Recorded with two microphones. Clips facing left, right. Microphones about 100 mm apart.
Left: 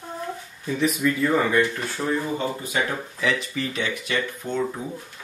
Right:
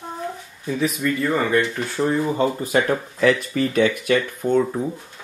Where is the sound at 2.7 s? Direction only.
50° right (ahead or behind).